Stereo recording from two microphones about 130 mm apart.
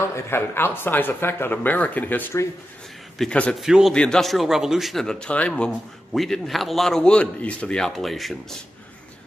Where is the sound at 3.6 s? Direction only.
5° right (ahead or behind).